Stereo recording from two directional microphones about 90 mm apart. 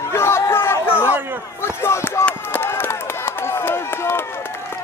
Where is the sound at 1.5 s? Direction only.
30° left (ahead or behind).